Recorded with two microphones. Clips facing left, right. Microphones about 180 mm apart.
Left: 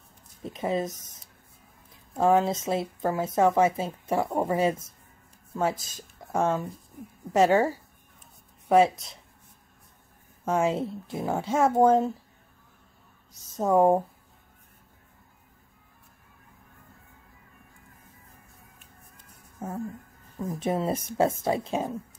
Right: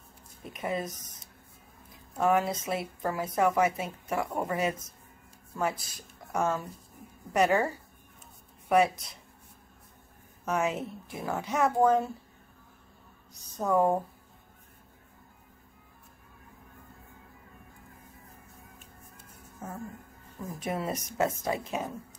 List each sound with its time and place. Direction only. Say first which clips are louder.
0.4 s speech: left 5 dB; 25° left (ahead or behind)
2.1 s speech: left 4 dB; 25° left (ahead or behind)
10.4 s speech: left 4 dB; 30° left (ahead or behind)
13.6 s speech: left 5 dB; 25° left (ahead or behind)
20.5 s speech: left 5 dB; 30° left (ahead or behind)